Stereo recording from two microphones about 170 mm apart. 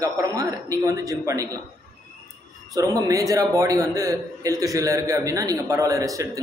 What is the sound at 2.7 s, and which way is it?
A man's voice, 20° right (ahead or behind).